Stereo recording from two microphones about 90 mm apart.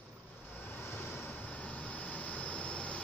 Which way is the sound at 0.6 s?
25° left (ahead or behind).